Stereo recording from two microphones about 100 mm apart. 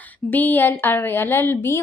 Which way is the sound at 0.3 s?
15° left (ahead or behind).